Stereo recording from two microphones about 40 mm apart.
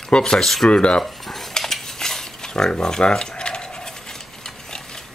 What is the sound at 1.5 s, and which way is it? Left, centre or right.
Cutlery, centre.